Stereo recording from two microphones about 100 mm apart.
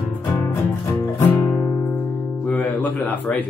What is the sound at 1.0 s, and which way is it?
Music, 20° left (ahead or behind).